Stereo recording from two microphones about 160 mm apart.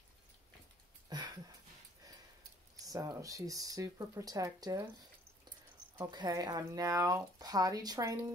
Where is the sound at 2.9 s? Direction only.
20° right (ahead or behind).